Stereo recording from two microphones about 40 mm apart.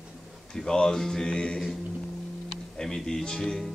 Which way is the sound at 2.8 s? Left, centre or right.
Centre.